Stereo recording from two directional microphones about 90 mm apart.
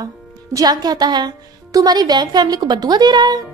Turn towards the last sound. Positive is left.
turn(degrees=-50)  # may be behind; listen again after turning